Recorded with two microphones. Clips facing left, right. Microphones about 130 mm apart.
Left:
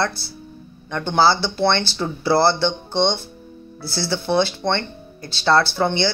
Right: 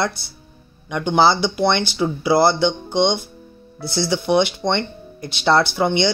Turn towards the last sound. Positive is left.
turn(degrees=-15)  # may be behind; listen again after turning